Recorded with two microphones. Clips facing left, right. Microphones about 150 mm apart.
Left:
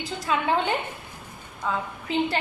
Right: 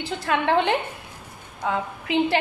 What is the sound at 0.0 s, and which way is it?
A woman's voice, 65° right (ahead or behind).